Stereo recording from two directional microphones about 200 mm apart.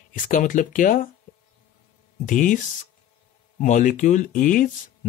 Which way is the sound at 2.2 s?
40° left (ahead or behind).